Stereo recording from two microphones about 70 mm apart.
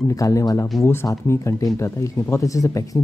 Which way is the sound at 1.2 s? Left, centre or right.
Left.